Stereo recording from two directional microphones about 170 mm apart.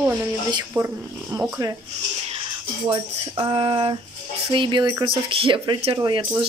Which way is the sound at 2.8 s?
30° right (ahead or behind).